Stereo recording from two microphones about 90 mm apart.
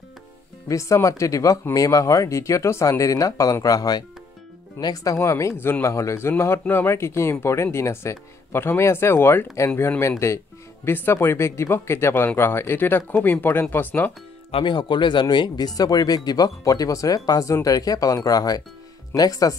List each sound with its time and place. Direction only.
0.7 s speech: 35° left (ahead or behind); by 14.1 s 20° left (ahead or behind)
14.5 s speech: 60° left (ahead or behind); by 19.5 s 40° left (ahead or behind)